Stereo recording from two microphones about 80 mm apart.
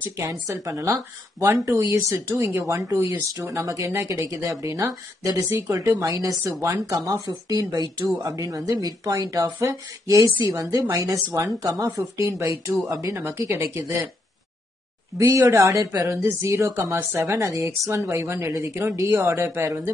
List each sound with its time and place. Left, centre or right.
0.2 s speech: right
6.0 s speech: right
7.2 s speech: right
15.1 s speech: right